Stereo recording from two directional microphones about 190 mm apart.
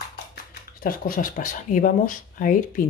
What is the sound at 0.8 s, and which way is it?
Speech, 50° left (ahead or behind).